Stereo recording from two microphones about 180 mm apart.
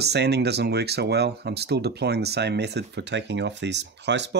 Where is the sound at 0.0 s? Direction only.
65° right (ahead or behind).